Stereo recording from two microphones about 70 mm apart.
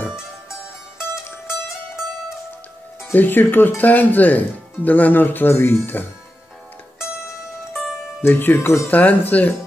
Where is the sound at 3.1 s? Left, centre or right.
Left.